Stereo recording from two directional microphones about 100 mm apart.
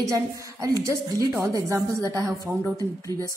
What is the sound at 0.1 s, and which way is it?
A woman's voice, 35° right (ahead or behind).